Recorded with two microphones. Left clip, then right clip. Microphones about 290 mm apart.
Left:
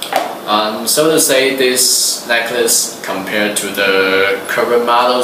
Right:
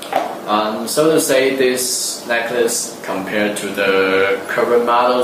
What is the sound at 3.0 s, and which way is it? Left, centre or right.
Speech, centre.